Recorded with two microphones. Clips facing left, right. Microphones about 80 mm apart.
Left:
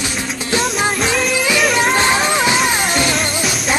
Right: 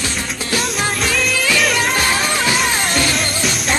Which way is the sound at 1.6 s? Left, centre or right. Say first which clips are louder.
Left 5 dB; centre.